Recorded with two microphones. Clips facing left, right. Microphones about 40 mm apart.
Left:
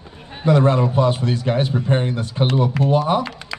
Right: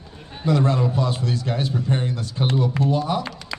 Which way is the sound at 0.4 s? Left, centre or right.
Left.